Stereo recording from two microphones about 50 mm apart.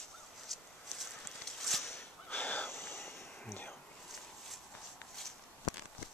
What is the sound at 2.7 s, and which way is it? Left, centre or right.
Vehicle, left.